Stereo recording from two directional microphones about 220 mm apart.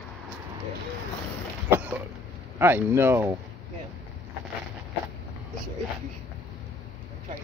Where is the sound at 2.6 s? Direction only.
10° right (ahead or behind).